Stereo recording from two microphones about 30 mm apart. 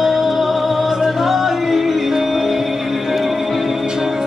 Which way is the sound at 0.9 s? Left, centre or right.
Centre.